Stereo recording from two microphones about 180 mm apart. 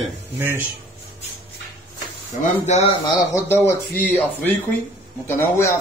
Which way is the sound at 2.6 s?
35° left (ahead or behind).